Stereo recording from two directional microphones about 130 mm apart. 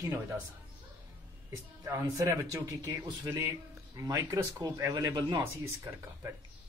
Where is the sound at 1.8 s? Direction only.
25° right (ahead or behind).